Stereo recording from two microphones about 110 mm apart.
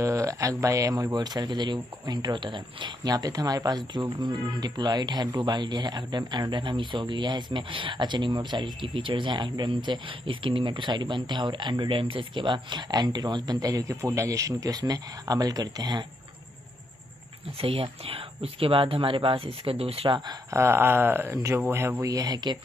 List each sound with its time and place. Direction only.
0.0 s speech: 30° right (ahead or behind); by 3.1 s 45° right (ahead or behind)
3.1 s speech: 35° right (ahead or behind)
17.6 s speech: 60° right (ahead or behind)
20.5 s speech: 20° right (ahead or behind)
22.1 s speech: 35° right (ahead or behind)